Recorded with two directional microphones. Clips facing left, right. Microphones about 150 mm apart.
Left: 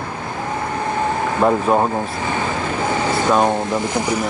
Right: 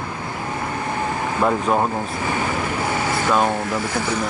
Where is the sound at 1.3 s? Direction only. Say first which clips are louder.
Left 3 dB; 20° left (ahead or behind).